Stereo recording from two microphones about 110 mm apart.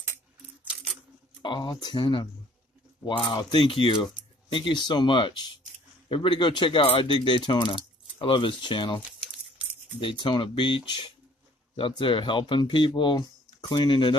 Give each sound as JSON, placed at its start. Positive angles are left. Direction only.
{"t": 1.4, "sound": "speech", "side_deg": 45}